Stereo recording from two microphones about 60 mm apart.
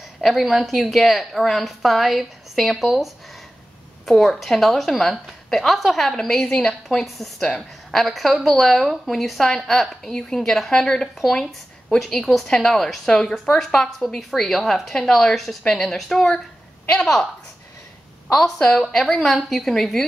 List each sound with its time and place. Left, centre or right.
0.2 s a woman's voice: centre
18.3 s a woman's voice: centre
19.2 s a woman's voice: centre